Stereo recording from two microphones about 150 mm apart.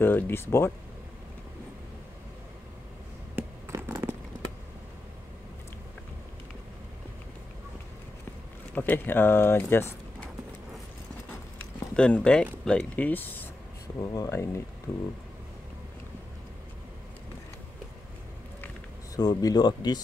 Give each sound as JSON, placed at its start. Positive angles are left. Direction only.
{"t": 0.0, "sound": "speech", "side_deg": 15}
{"t": 3.3, "sound": "a sound", "side_deg": -15}
{"t": 8.7, "sound": "speech", "side_deg": 15}
{"t": 11.9, "sound": "speech", "side_deg": 5}
{"t": 13.9, "sound": "speech", "side_deg": 25}
{"t": 19.1, "sound": "speech", "side_deg": 25}